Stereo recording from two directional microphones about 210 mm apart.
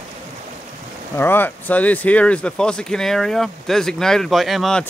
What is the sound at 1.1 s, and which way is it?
Speech, 10° left (ahead or behind).